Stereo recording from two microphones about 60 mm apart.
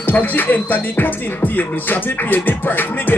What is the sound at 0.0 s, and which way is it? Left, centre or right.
Music, left.